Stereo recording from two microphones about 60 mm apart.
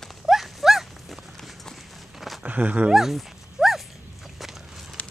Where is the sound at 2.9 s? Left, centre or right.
Centre.